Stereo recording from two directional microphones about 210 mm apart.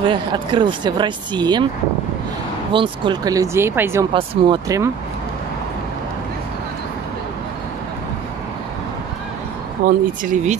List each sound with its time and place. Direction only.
0.0 s speech: 20° right (ahead or behind)
2.7 s speech: 25° right (ahead or behind)
9.8 s speech: 40° right (ahead or behind)